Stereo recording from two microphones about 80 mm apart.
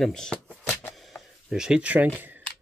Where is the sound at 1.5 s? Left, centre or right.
Centre.